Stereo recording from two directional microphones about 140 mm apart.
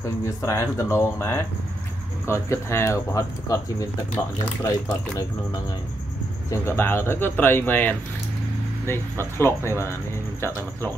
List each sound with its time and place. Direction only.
0.2 s speech: 20° left (ahead or behind)
4.6 s speech: 25° left (ahead or behind)
6.5 s speech: 15° left (ahead or behind)